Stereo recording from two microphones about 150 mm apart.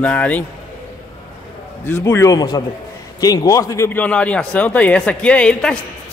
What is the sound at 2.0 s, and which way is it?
A man's voice, 25° left (ahead or behind).